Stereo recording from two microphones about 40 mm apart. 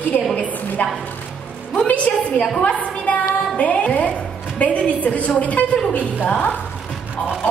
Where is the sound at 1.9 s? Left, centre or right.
Left.